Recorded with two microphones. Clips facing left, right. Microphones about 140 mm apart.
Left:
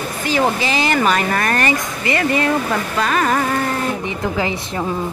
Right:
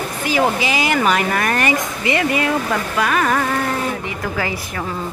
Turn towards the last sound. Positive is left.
turn(degrees=5)  # may be behind; listen again after turning